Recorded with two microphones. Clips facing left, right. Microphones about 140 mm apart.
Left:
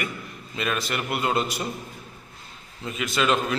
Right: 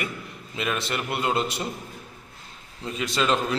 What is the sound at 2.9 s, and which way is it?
Speech, 30° right (ahead or behind).